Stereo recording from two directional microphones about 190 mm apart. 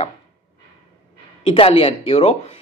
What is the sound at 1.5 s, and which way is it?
Speech, 30° left (ahead or behind).